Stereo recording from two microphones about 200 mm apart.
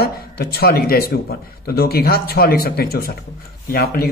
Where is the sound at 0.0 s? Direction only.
50° left (ahead or behind).